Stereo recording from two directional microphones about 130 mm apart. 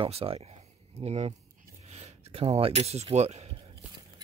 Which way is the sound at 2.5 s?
50° right (ahead or behind).